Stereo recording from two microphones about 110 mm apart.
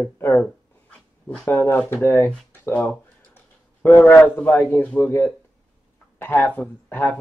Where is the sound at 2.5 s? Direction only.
15° left (ahead or behind).